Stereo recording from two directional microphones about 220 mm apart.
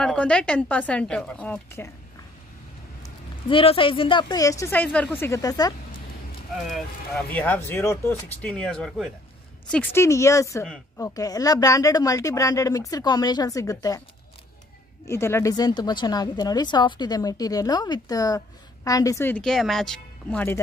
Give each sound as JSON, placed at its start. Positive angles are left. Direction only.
{"t": 0.0, "sound": "speech", "side_deg": 5}
{"t": 3.0, "sound": "speech", "side_deg": 25}
{"t": 6.6, "sound": "a woman's voice", "side_deg": 0}
{"t": 9.9, "sound": "a woman's voice", "side_deg": 15}
{"t": 15.0, "sound": "a woman's voice", "side_deg": 10}